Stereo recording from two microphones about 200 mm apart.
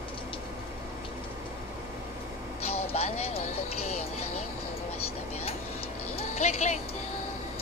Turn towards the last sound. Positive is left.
turn(degrees=35)  # may be behind; listen again after turning